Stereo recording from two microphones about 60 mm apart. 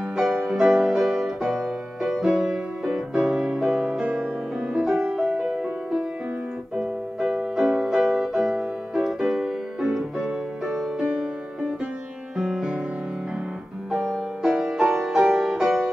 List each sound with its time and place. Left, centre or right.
0.1 s music: centre
4.8 s music: centre
12.4 s music: centre
14.0 s music: centre